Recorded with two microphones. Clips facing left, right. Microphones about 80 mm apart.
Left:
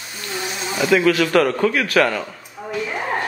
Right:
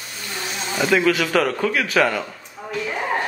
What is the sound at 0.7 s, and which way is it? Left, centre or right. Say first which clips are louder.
A man's voice: left 2 dB; centre.